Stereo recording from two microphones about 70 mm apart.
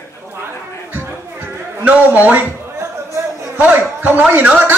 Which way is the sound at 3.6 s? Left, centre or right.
Right.